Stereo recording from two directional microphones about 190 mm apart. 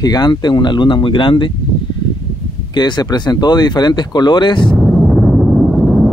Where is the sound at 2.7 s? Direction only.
20° left (ahead or behind).